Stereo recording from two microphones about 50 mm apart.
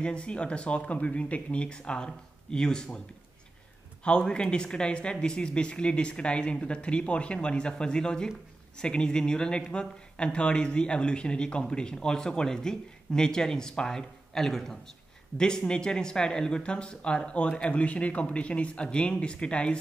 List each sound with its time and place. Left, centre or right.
0.0 s speech: centre
4.0 s speech: centre